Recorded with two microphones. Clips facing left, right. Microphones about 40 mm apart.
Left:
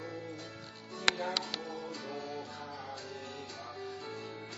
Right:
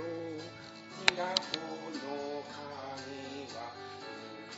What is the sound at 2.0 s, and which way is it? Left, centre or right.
Music, right.